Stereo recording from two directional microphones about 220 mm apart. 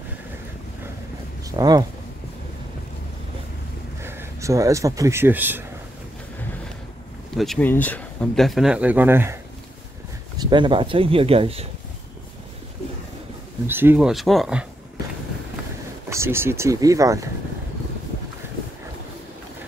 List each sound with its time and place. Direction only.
1.6 s speech: 15° right (ahead or behind)
4.0 s speech: 10° right (ahead or behind)
7.3 s speech: centre (ahead or behind); by 11.6 s 25° right (ahead or behind)
13.7 s speech: 10° right (ahead or behind)
16.1 s speech: 10° right (ahead or behind)